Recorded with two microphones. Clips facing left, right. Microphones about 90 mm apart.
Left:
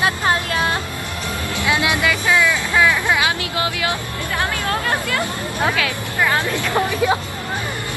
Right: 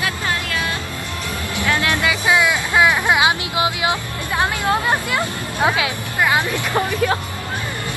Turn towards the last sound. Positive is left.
turn(degrees=-15)  # may be behind; listen again after turning